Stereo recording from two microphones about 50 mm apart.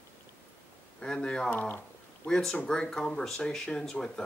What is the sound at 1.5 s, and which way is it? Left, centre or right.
Speech, left.